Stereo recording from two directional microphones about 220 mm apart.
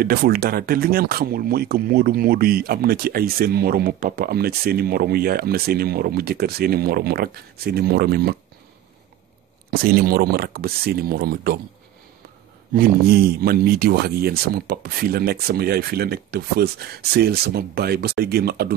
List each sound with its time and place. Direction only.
0.0 s speech: 45° right (ahead or behind)
9.7 s speech: 45° right (ahead or behind)
12.7 s speech: 45° right (ahead or behind)